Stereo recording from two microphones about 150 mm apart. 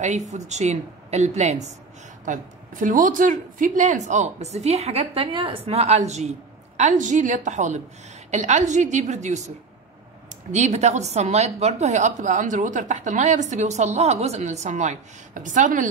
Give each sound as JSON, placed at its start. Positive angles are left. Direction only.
{"t": 0.5, "sound": "a woman's voice", "side_deg": -50}
{"t": 10.5, "sound": "a woman's voice", "side_deg": -50}